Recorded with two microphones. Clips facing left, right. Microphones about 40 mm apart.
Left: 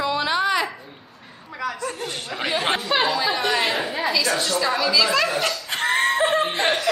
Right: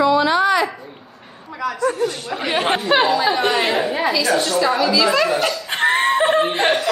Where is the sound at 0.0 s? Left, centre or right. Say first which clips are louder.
Right 7 dB; centre.